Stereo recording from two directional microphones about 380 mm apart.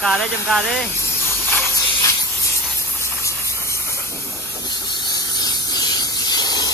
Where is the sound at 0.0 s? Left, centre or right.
Centre.